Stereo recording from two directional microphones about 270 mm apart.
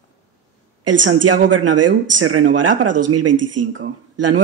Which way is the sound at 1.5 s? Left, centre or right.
Right.